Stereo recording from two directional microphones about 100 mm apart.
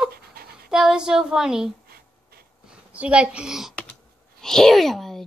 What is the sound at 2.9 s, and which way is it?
Speech, 10° right (ahead or behind).